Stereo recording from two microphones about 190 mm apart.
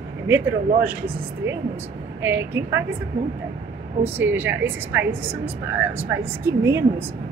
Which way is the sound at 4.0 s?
10° right (ahead or behind).